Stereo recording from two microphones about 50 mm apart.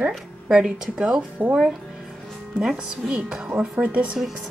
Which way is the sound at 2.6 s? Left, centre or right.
Centre.